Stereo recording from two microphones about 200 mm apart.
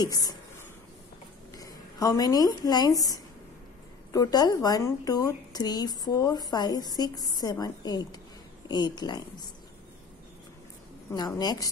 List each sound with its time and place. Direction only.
0.0 s a sound: 20° left (ahead or behind)
1.5 s a woman's voice: 15° left (ahead or behind)
11.1 s a woman's voice: 20° left (ahead or behind)